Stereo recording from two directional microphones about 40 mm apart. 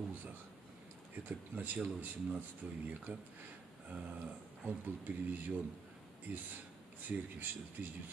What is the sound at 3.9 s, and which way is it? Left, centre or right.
Speech, right.